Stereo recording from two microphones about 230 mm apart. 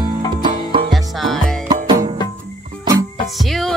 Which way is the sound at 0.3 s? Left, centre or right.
Centre.